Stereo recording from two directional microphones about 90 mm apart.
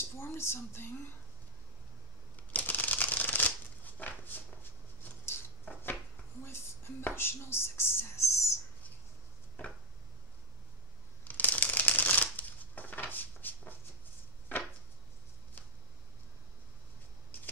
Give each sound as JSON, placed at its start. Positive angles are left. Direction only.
{"t": 0.1, "sound": "speech", "side_deg": 30}
{"t": 2.5, "sound": "shuffling cards", "side_deg": 20}
{"t": 5.2, "sound": "a sound", "side_deg": 25}
{"t": 11.2, "sound": "shuffling cards", "side_deg": 15}